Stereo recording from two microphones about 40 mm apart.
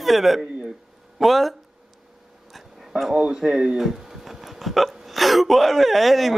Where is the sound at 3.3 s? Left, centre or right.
Right.